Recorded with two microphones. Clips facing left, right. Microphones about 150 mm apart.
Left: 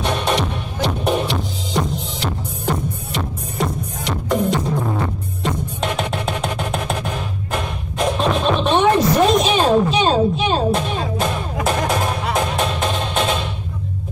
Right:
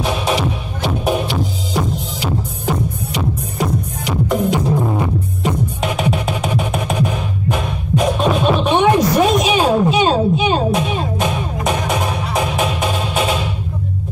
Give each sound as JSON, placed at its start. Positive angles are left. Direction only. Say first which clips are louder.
{"t": 0.0, "sound": "music", "louder": "right 2 dB", "side_deg": -5}
{"t": 4.6, "sound": "music", "louder": "right 4 dB", "side_deg": -15}